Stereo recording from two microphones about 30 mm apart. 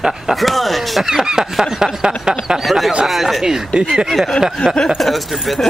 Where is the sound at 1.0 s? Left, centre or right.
Centre.